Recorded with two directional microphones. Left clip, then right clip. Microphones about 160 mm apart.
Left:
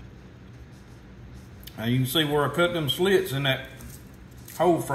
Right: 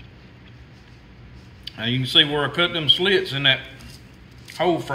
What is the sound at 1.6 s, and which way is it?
Speech, 15° left (ahead or behind).